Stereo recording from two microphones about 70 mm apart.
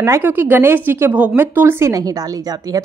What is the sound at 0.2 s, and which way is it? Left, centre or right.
A woman's voice, right.